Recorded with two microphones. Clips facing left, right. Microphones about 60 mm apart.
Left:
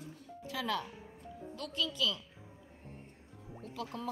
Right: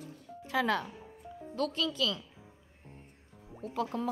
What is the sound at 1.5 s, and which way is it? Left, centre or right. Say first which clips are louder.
Speech: right 6 dB; right.